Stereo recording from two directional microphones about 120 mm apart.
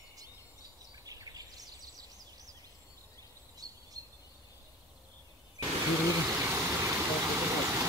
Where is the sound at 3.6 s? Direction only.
30° right (ahead or behind).